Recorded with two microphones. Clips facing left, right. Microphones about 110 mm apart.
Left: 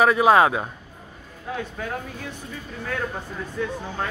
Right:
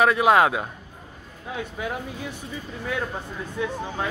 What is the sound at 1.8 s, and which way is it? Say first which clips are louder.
Speech: right 1 dB; 10° right (ahead or behind).